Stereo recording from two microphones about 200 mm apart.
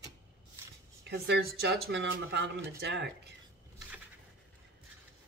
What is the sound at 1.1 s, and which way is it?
Speech, 60° right (ahead or behind).